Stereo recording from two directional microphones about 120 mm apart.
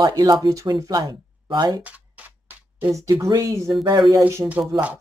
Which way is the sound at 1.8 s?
15° right (ahead or behind).